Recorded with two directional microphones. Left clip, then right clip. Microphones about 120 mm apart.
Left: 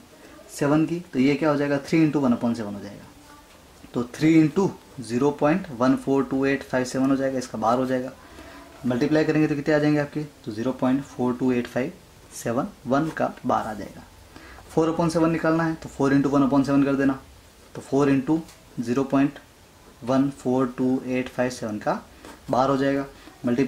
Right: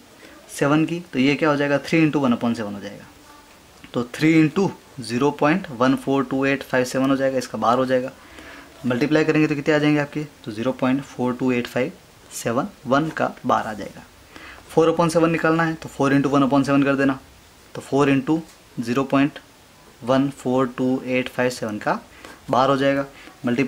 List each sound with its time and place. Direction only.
0.6 s speech: 25° right (ahead or behind)
3.9 s speech: 30° right (ahead or behind)
20.5 s speech: 30° right (ahead or behind)